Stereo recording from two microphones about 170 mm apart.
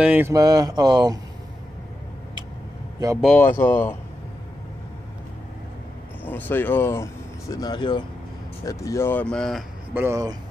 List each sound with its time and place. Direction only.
0.0 s speech: 10° right (ahead or behind)
0.3 s speech: 20° right (ahead or behind)
3.2 s speech: 5° left (ahead or behind)
6.2 s speech: 10° left (ahead or behind)
9.9 s speech: 15° right (ahead or behind)